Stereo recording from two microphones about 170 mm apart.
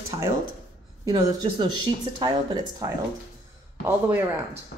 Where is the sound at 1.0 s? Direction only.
25° right (ahead or behind).